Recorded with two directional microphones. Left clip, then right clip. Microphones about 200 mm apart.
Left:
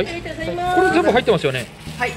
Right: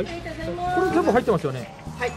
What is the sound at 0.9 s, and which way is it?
Speech, 25° right (ahead or behind).